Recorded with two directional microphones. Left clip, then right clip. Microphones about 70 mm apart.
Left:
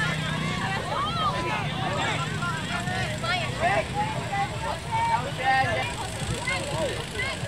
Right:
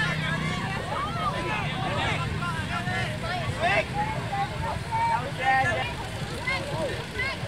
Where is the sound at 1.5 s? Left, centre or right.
Centre.